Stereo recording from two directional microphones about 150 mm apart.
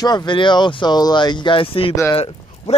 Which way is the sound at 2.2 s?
40° left (ahead or behind).